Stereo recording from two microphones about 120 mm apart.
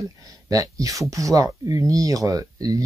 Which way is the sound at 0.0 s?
30° right (ahead or behind).